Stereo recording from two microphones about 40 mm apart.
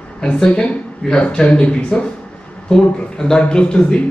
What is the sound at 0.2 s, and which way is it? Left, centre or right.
Speech, left.